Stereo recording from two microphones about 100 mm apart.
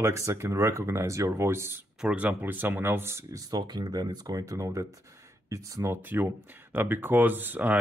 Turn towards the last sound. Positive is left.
turn(degrees=-20)  # may be behind; listen again after turning